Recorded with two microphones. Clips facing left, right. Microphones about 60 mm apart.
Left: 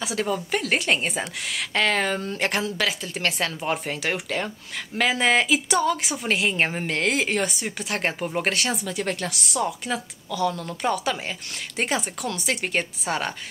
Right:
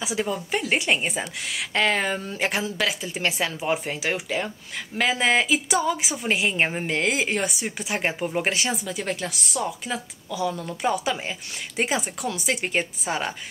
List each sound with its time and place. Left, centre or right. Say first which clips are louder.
0.0 s speech: left 1 dB; centre